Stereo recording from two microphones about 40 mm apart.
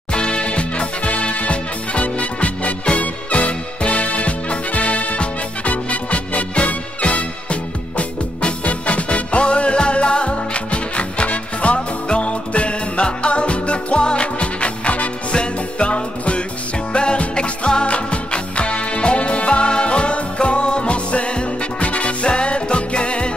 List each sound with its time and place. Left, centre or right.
0.1 s music: left